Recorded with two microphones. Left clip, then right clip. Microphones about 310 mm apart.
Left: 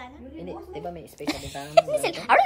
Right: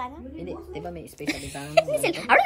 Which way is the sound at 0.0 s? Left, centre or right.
Centre.